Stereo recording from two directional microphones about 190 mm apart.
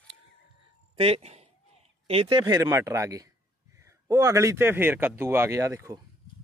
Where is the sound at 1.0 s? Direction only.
30° right (ahead or behind); by 6.0 s 15° right (ahead or behind).